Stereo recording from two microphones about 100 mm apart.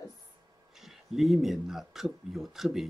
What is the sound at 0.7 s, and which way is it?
Speech, 5° right (ahead or behind).